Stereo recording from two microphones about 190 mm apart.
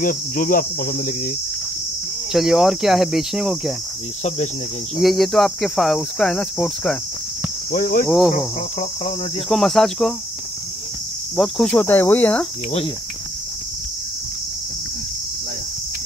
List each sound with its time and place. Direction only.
0.0 s speech: 45° left (ahead or behind)
2.3 s speech: centre (ahead or behind)
4.9 s speech: centre (ahead or behind)
7.7 s speech: 45° left (ahead or behind)
8.3 s cricket: 35° left (ahead or behind)
9.5 s speech: centre (ahead or behind)
11.3 s cricket: centre (ahead or behind)